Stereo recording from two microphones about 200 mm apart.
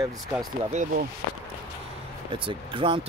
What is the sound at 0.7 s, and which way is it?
Speech, 35° right (ahead or behind).